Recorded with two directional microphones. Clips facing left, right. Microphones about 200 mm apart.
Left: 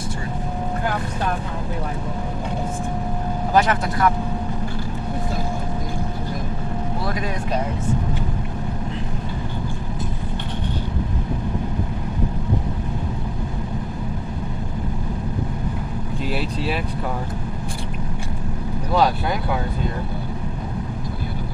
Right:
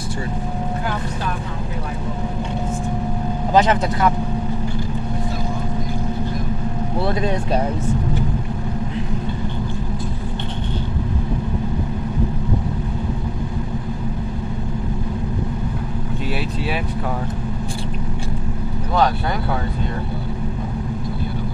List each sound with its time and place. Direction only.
3.5 s speech: 20° right (ahead or behind)
7.1 s speech: 30° right (ahead or behind)